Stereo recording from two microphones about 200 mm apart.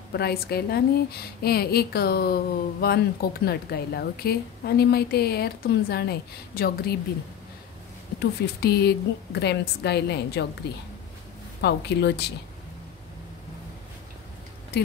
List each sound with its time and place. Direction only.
0.1 s a woman's voice: 55° left (ahead or behind)
8.2 s a woman's voice: 55° left (ahead or behind)
11.6 s a woman's voice: 55° left (ahead or behind)